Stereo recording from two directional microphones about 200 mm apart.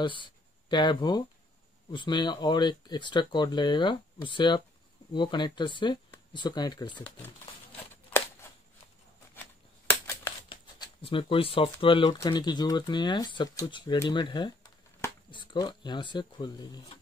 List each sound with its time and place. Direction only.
0.0 s speech: 25° left (ahead or behind)
7.9 s a sound: 10° left (ahead or behind)
10.5 s speech: 25° left (ahead or behind)